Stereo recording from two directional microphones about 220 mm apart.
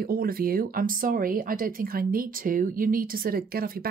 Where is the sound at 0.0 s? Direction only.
40° right (ahead or behind).